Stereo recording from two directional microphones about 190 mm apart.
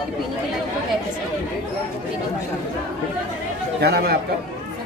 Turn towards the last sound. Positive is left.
turn(degrees=-55)  # may be behind; listen again after turning